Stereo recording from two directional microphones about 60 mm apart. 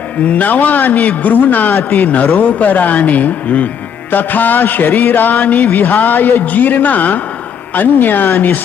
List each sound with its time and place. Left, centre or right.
0.2 s a man's voice: left
4.1 s music: left